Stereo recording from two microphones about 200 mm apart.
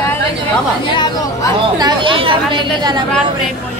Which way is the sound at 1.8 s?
25° right (ahead or behind).